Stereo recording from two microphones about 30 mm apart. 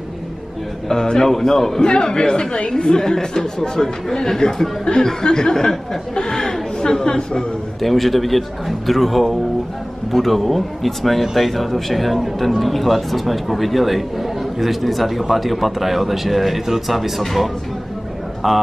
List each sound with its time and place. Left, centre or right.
1.0 s a man's voice: left
1.8 s speech: left
7.8 s speech: centre
18.4 s speech: centre